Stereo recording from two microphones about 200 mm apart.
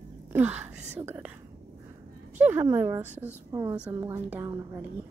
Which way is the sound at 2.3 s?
10° right (ahead or behind).